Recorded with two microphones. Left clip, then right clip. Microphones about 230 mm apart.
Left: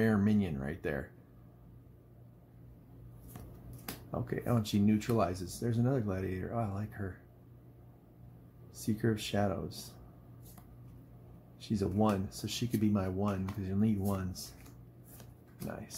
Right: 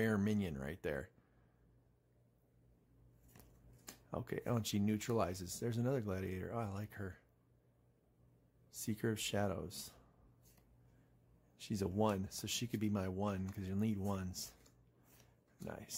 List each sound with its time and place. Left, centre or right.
0.0 s speech: right
4.1 s speech: right
8.8 s speech: right
11.6 s speech: right
15.6 s speech: right